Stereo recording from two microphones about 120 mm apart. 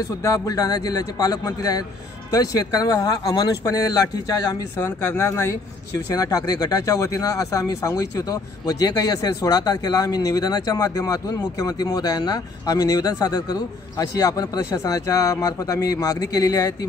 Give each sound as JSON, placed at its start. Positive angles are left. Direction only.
{"t": 0.2, "sound": "speech", "side_deg": 30}